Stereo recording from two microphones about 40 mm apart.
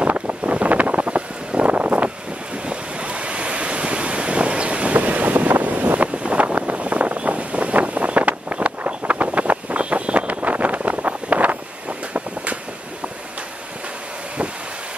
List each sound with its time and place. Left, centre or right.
0.0 s wind noise: right
2.7 s waves: right
4.9 s boat: right
6.1 s vehicle: right